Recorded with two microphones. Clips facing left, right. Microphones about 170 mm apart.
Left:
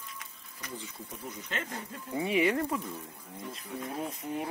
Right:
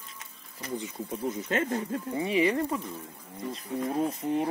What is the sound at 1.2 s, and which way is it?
Speech, 50° right (ahead or behind).